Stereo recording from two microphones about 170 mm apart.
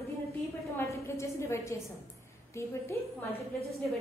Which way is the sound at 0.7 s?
15° left (ahead or behind).